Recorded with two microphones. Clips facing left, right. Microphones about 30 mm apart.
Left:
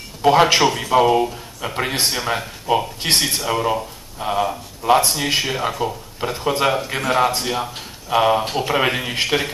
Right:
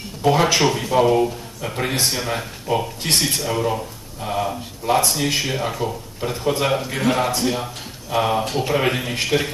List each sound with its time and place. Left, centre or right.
0.2 s speech: left